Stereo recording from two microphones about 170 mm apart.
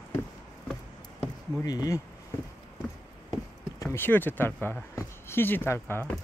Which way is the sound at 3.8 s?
15° left (ahead or behind).